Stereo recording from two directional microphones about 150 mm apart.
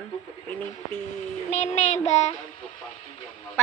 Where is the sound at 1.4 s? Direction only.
50° left (ahead or behind).